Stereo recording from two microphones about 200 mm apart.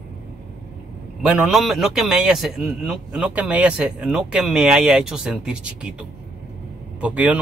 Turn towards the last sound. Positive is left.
turn(degrees=-5)  # may be behind; listen again after turning